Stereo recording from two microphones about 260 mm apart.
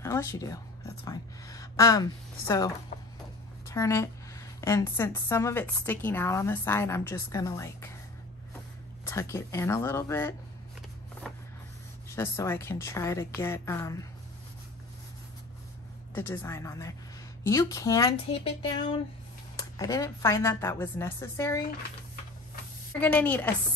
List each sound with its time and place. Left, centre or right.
0.0 s a woman's voice: centre
2.9 s a sound: left
3.6 s speech: centre
9.0 s speech: centre
11.3 s printer: centre
12.2 s speech: centre
16.2 s speech: centre
22.9 s speech: centre